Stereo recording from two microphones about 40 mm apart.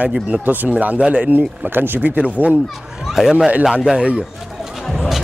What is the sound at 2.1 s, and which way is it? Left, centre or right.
Speech, right.